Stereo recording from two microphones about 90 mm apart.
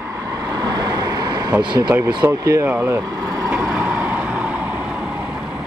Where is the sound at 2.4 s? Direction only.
35° right (ahead or behind).